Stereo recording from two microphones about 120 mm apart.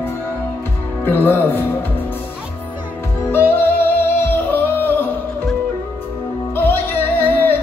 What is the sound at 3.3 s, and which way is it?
Music, 20° left (ahead or behind).